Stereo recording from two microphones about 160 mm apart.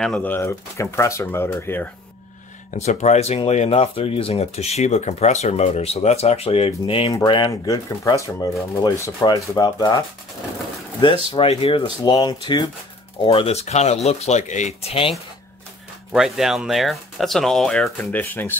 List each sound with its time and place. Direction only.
0.0 s speech: 5° left (ahead or behind)
2.7 s speech: 45° left (ahead or behind); by 10.0 s 25° left (ahead or behind)
11.3 s speech: 35° left (ahead or behind)
12.0 s speech: 25° left (ahead or behind)
16.1 s speech: centre (ahead or behind)